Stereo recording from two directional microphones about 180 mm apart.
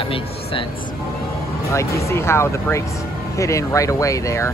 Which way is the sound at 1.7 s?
15° left (ahead or behind).